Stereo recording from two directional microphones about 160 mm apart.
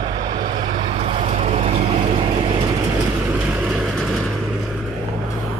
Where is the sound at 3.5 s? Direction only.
5° right (ahead or behind).